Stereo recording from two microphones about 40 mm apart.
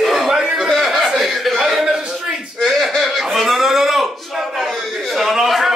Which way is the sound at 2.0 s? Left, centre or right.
Centre.